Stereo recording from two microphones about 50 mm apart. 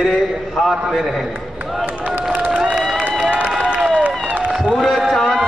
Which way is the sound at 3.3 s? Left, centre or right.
Right.